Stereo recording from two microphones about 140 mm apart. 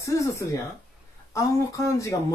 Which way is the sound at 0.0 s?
20° left (ahead or behind).